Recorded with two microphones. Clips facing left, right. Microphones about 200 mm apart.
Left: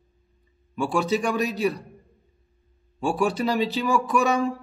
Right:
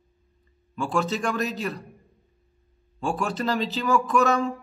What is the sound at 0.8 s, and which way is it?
Speech, centre (ahead or behind).